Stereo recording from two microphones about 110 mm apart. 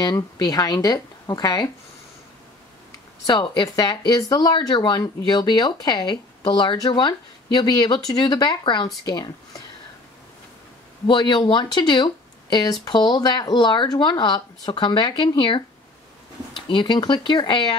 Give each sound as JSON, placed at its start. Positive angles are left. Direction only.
{"t": 0.0, "sound": "speech", "side_deg": 40}
{"t": 3.3, "sound": "speech", "side_deg": 45}
{"t": 11.1, "sound": "speech", "side_deg": 45}
{"t": 16.6, "sound": "speech", "side_deg": 45}